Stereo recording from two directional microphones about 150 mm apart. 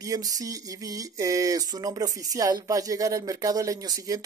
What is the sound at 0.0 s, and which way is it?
Speech, 25° right (ahead or behind).